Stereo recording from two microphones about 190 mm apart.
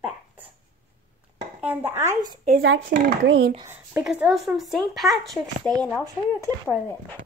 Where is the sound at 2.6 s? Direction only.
85° right.